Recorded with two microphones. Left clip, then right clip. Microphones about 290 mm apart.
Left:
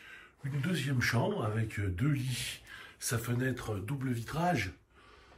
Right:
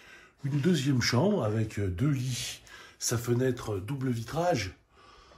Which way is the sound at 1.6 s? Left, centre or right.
Centre.